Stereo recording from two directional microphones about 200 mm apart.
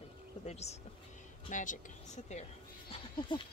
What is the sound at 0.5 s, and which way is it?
Speech, 35° left (ahead or behind).